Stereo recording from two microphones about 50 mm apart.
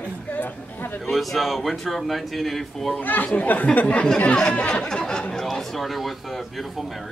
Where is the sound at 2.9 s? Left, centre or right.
Left.